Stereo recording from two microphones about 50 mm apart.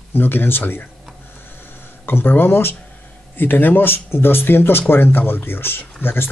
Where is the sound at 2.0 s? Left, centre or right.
Left.